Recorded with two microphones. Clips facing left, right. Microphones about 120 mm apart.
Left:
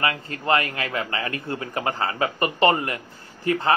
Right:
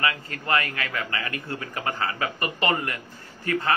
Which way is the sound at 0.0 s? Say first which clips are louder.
Left 3 dB; 30° left (ahead or behind).